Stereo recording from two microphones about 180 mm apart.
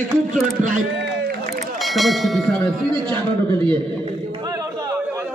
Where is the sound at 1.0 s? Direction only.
60° right (ahead or behind).